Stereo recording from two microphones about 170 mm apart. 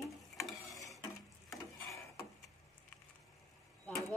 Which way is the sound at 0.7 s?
20° left (ahead or behind).